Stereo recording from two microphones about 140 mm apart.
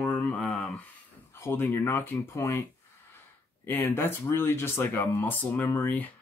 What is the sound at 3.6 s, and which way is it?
Speech, 15° left (ahead or behind).